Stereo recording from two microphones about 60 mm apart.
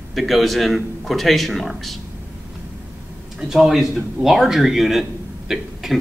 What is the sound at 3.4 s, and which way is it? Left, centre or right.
Speech, centre.